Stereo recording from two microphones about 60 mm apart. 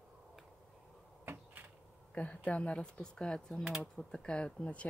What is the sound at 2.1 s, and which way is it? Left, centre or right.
Speech, left.